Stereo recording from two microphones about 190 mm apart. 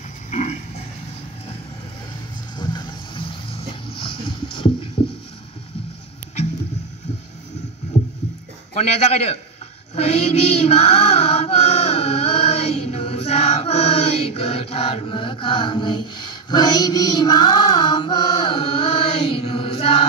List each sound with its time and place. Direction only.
0.3 s pig: 35° left (ahead or behind)
2.5 s a sound: 20° left (ahead or behind)
5.0 s rowboat: 25° left (ahead or behind)
8.7 s a man's voice: 35° left (ahead or behind)
9.9 s mantra: 35° left (ahead or behind)
19.3 s choir: 30° left (ahead or behind)